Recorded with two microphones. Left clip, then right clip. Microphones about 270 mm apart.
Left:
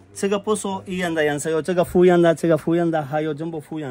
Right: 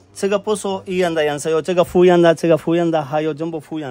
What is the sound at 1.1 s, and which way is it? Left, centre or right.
A man's voice, centre.